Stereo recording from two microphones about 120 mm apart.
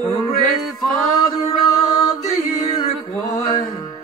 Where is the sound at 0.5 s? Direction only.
Centre (ahead or behind).